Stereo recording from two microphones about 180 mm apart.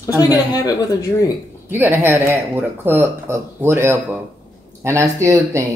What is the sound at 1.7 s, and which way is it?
Speech, 15° right (ahead or behind).